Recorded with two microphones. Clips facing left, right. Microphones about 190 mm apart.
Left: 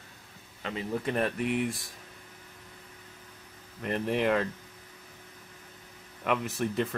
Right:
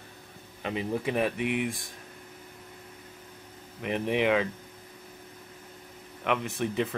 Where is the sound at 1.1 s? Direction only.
5° right (ahead or behind).